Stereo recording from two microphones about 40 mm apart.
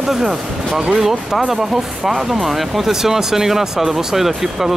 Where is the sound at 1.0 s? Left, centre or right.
Centre.